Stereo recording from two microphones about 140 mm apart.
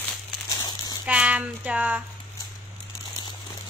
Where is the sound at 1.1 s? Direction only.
10° right (ahead or behind).